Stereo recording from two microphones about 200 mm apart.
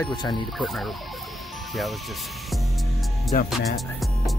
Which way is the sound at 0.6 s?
Centre (ahead or behind).